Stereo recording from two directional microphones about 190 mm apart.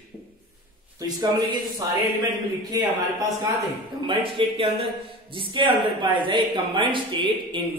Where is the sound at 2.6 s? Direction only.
20° right (ahead or behind).